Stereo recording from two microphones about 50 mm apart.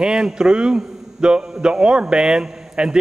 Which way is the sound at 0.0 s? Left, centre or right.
Centre.